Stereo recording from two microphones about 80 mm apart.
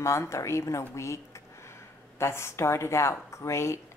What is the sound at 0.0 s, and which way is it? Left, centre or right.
A woman's voice, left.